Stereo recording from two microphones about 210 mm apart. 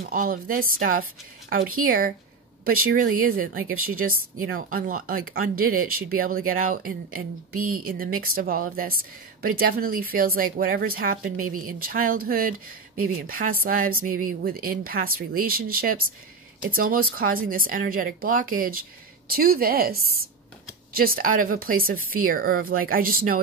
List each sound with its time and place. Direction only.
0.1 s speech: 40° right (ahead or behind)